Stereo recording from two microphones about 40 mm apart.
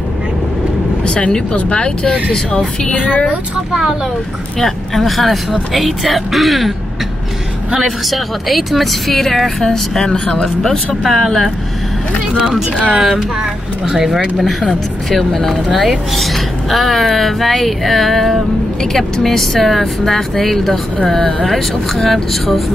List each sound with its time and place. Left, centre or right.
1.0 s speech: left
4.6 s speech: centre
7.8 s speech: centre
10.1 s speech: left
10.4 s speech: centre
12.4 s speech: centre
14.6 s speech: centre